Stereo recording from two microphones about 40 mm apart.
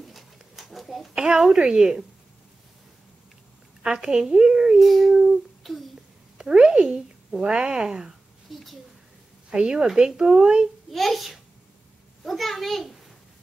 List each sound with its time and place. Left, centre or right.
0.0 s a sound: centre
1.1 s speech: right
3.8 s speech: centre
4.7 s a child's voice: centre
5.1 s speech: centre
5.6 s a child's voice: centre
6.3 s speech: right
8.5 s a child's voice: centre
9.5 s speech: right
10.9 s a child's voice: centre